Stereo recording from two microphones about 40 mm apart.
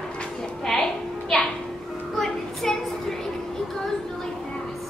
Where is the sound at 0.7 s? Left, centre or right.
Centre.